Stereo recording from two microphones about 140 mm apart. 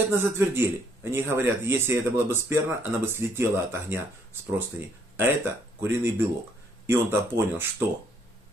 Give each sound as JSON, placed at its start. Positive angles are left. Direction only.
{"t": 0.1, "sound": "speech", "side_deg": -15}